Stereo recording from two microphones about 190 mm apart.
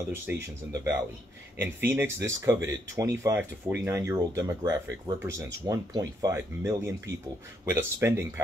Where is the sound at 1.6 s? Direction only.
10° right (ahead or behind).